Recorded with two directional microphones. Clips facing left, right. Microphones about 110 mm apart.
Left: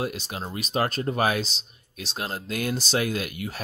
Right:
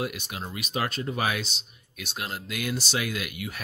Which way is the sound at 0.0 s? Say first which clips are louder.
Left 2 dB; 30° left (ahead or behind).